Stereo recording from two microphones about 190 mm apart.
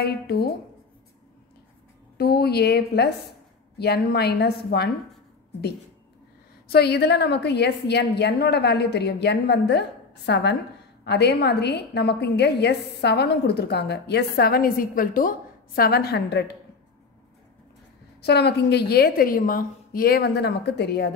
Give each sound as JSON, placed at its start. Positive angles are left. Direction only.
{"t": 0.0, "sound": "a woman's voice", "side_deg": 55}
{"t": 2.1, "sound": "a woman's voice", "side_deg": 55}
{"t": 6.7, "sound": "a woman's voice", "side_deg": 60}
{"t": 18.2, "sound": "a woman's voice", "side_deg": 60}